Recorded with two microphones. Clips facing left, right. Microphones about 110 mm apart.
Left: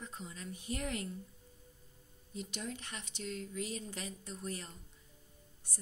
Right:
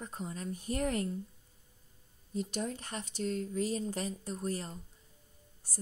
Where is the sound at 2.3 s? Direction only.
40° right (ahead or behind).